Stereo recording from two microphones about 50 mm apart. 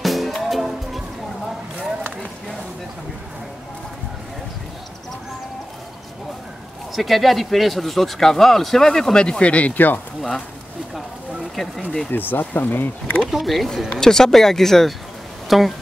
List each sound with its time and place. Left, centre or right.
0.0 s music: centre
7.0 s speech: centre; by 9.8 s left
11.5 s speech: centre
12.1 s speech: left
13.3 s speech: centre
13.8 s speech: centre
15.4 s a sound: centre